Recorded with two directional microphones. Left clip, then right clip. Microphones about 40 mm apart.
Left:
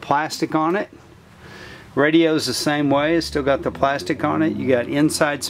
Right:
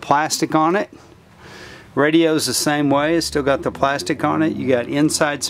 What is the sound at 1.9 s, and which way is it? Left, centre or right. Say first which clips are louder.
Speech: right 1 dB; right.